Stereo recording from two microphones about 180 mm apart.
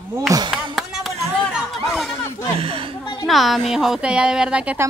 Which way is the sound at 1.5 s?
Centre (ahead or behind).